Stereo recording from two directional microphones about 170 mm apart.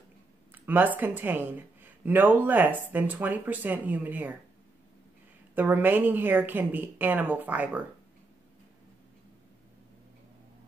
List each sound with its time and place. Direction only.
0.5 s speech: 10° right (ahead or behind)
5.5 s speech: 10° right (ahead or behind)